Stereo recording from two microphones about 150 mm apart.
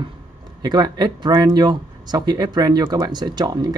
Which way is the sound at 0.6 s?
30° right (ahead or behind).